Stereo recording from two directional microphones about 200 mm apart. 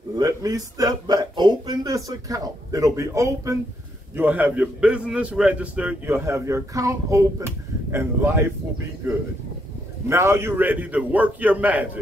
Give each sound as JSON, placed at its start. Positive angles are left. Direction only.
{"t": 0.1, "sound": "a man's voice", "side_deg": -15}
{"t": 10.0, "sound": "a man's voice", "side_deg": -15}